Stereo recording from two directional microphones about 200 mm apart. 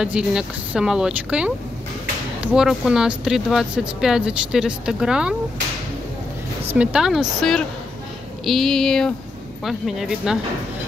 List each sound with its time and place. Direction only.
0.0 s speech: 5° right (ahead or behind)
6.7 s speech: 5° right (ahead or behind)